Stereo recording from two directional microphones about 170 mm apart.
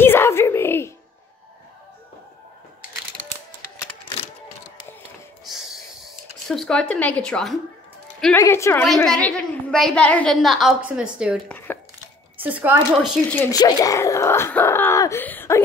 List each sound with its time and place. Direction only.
0.0 s music: 15° left (ahead or behind)
5.5 s a sound: centre (ahead or behind)
8.4 s speech: 15° left (ahead or behind)
8.8 s a woman's voice: centre (ahead or behind)
11.4 s a sound: 10° left (ahead or behind)
12.4 s speech: 10° right (ahead or behind)
13.5 s speech: 20° left (ahead or behind)